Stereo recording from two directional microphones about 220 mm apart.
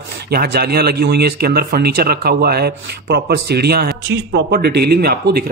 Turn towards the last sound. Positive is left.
turn(degrees=-45)  # may be behind; listen again after turning